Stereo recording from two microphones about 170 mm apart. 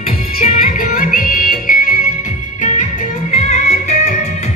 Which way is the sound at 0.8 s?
55° left (ahead or behind).